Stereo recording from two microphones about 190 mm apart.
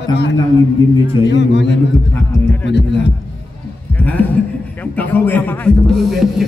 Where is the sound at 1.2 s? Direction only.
65° left (ahead or behind).